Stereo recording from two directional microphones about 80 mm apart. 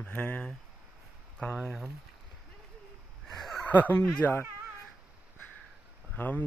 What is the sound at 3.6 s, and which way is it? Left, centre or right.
Speech, left.